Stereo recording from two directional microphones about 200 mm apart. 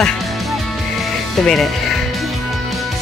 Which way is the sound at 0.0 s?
Centre (ahead or behind).